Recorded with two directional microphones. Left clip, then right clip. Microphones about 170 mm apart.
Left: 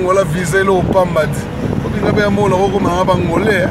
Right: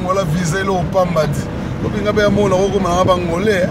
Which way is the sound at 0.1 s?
20° left (ahead or behind).